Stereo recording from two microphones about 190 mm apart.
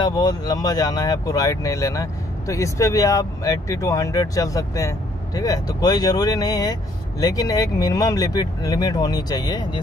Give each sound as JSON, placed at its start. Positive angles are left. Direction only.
{"t": 0.0, "sound": "speech", "side_deg": 20}